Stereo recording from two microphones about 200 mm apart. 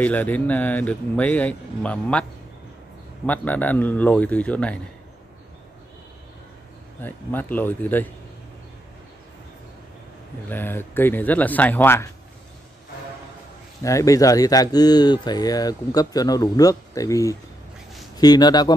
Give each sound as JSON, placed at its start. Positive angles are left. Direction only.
{"t": 0.0, "sound": "a man's voice", "side_deg": 10}
{"t": 3.3, "sound": "a man's voice", "side_deg": 10}
{"t": 7.0, "sound": "a man's voice", "side_deg": 10}
{"t": 10.5, "sound": "a man's voice", "side_deg": 10}
{"t": 13.8, "sound": "a man's voice", "side_deg": 15}